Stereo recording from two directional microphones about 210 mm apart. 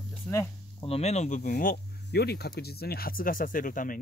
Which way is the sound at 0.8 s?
30° left (ahead or behind).